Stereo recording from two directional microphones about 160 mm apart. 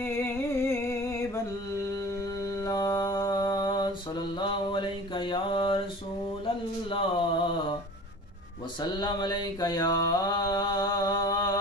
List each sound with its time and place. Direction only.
0.0 s a sound: 15° left (ahead or behind)
2.4 s mantra: 20° left (ahead or behind)
6.4 s speech: 30° left (ahead or behind)
9.0 s mantra: 25° left (ahead or behind)